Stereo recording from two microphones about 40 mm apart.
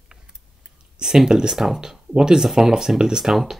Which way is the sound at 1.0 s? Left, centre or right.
Centre.